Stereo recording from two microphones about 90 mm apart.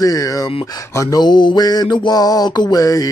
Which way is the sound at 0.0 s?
40° left (ahead or behind).